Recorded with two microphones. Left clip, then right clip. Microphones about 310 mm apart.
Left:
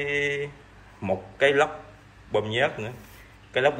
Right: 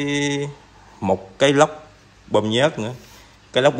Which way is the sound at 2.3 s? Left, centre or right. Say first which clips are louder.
Right 6 dB; right.